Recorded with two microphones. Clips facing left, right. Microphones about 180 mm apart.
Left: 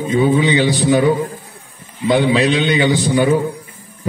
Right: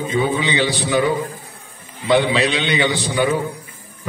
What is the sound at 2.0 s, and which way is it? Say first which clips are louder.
A man's voice: left 3 dB; 45° left (ahead or behind).